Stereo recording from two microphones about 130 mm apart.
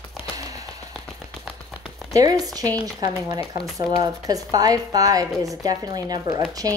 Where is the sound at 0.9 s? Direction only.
5° left (ahead or behind).